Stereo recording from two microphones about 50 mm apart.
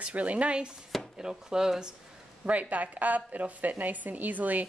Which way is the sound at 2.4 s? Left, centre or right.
Right.